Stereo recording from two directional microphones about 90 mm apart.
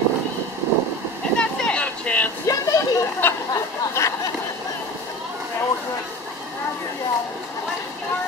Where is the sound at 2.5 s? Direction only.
40° left (ahead or behind).